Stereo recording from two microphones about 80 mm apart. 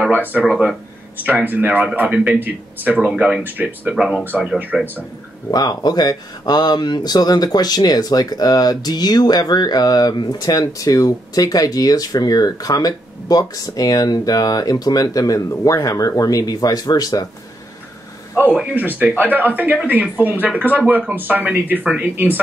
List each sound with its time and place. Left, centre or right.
0.1 s speech: right
0.4 s speech: centre
1.2 s speech: right
3.2 s speech: centre
3.4 s speech: right
3.9 s speech: centre
5.5 s speech: left
18.6 s speech: centre